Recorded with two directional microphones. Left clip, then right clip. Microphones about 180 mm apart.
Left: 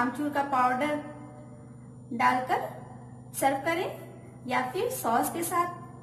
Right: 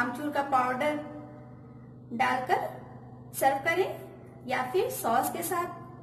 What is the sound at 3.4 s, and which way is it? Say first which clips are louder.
A woman's voice: right 1 dB; 30° right (ahead or behind).